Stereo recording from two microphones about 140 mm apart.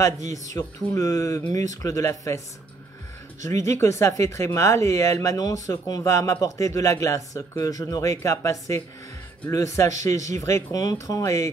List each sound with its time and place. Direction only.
0.0 s speech: 25° left (ahead or behind)
3.4 s speech: 20° left (ahead or behind)